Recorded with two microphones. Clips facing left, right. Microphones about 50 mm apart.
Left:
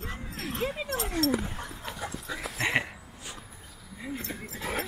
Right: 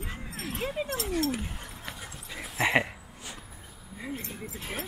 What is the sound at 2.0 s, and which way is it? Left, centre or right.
Dog, left.